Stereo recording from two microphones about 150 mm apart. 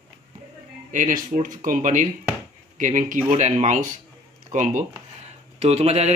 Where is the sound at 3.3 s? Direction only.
50° right (ahead or behind).